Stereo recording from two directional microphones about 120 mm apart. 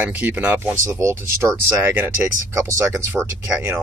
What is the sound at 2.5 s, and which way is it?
Speech, 25° right (ahead or behind).